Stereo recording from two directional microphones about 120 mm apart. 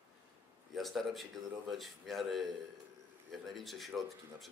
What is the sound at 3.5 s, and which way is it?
A man's voice, centre (ahead or behind).